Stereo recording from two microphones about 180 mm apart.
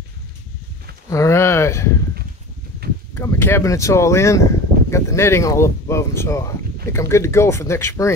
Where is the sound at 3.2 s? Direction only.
10° left (ahead or behind).